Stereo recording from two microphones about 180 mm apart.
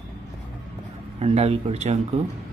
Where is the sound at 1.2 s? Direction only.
35° right (ahead or behind).